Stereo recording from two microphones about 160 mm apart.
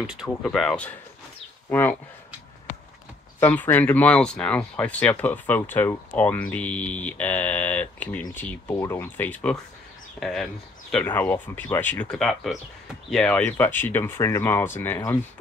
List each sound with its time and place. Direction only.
0.0 s speech: 5° right (ahead or behind); by 2.0 s 10° left (ahead or behind)
3.3 s speech: 10° left (ahead or behind)